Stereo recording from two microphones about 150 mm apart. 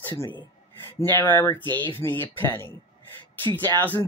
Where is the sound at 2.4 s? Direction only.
15° left (ahead or behind).